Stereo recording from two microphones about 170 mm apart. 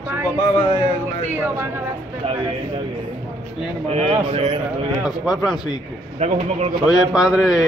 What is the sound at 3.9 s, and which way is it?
Speech, 35° right (ahead or behind).